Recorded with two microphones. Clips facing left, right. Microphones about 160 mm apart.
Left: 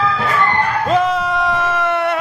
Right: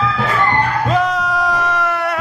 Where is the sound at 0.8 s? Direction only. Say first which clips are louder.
Left 1 dB; centre (ahead or behind).